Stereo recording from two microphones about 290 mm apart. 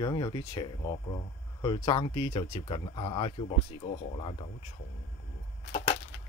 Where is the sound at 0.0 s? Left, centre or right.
Centre.